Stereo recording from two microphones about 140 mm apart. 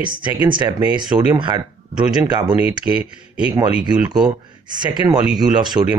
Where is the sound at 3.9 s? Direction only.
30° right (ahead or behind).